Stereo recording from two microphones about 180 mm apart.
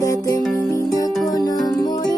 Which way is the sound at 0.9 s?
20° left (ahead or behind).